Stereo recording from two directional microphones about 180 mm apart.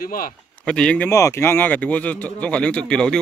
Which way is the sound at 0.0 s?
50° left (ahead or behind).